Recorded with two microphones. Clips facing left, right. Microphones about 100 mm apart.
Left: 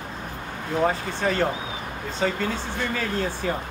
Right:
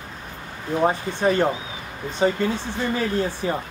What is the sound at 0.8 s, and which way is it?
Speech, 20° right (ahead or behind).